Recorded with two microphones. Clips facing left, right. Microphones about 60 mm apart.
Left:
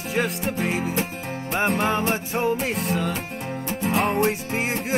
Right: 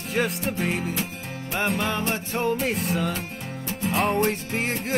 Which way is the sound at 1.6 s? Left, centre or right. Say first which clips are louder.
Left 4 dB; left.